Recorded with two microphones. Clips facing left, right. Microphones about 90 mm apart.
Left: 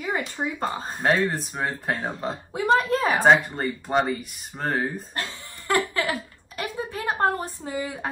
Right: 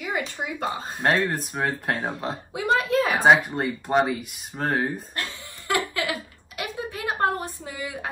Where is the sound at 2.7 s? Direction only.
35° left (ahead or behind).